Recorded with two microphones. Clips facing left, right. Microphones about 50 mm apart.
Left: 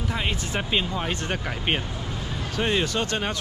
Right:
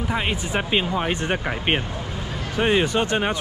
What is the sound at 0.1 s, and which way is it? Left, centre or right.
Speech, centre.